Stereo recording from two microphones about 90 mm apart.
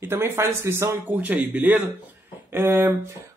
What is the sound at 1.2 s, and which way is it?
A man's voice, 20° right (ahead or behind).